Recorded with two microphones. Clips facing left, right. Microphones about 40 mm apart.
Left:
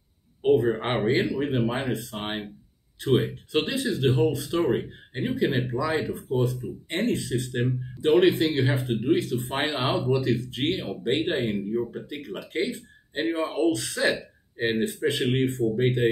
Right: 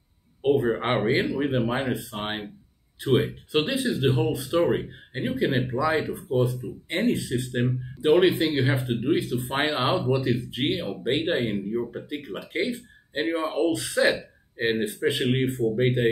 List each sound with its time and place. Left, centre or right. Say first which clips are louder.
0.4 s speech: left 1 dB; centre